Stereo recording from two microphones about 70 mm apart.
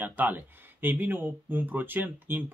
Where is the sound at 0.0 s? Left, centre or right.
Right.